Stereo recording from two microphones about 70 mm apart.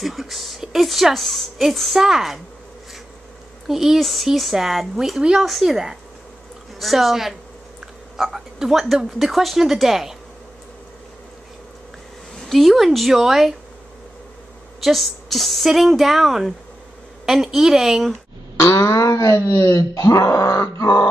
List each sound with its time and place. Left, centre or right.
0.0 s a woman's voice: centre
3.6 s a woman's voice: centre
12.4 s a woman's voice: centre
14.8 s a woman's voice: centre
18.6 s grunt: left